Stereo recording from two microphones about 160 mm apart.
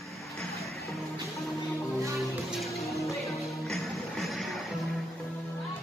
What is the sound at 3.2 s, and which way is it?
Music, centre (ahead or behind).